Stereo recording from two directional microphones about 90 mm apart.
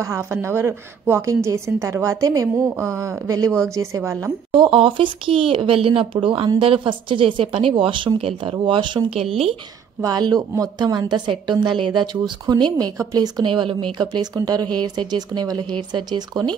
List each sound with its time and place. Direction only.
0.0 s a woman's voice: 30° right (ahead or behind)
4.5 s speech: 70° right (ahead or behind); by 6.0 s 90° right
6.2 s a woman's voice: 75° right (ahead or behind)
10.0 s a woman's voice: 50° right (ahead or behind)
13.5 s a woman's voice: 65° right (ahead or behind)
13.9 s a woman's voice: 50° right (ahead or behind)